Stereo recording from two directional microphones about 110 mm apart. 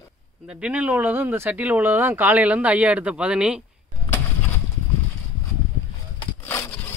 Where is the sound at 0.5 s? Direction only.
10° right (ahead or behind).